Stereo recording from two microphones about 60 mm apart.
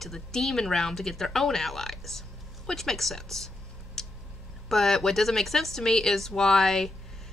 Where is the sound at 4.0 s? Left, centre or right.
Centre.